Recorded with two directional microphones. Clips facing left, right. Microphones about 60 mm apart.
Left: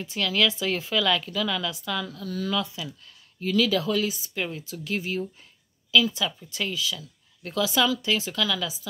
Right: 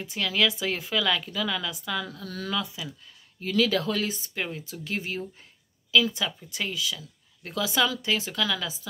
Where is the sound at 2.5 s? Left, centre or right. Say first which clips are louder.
Right 1 dB; right.